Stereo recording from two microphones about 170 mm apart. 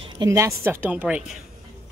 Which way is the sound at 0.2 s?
15° right (ahead or behind).